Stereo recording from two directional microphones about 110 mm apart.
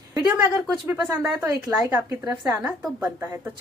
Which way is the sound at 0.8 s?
20° right (ahead or behind).